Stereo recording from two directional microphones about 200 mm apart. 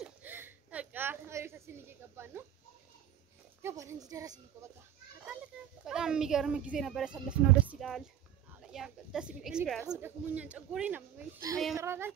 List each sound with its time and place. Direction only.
0.0 s a sound: 10° right (ahead or behind)
3.6 s a child's voice: 15° right (ahead or behind)
5.5 s a child's voice: 5° right (ahead or behind)